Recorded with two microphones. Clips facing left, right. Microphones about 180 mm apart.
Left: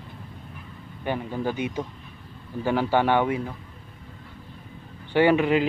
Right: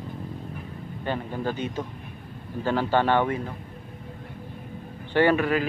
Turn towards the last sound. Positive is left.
turn(degrees=20)  # may be behind; listen again after turning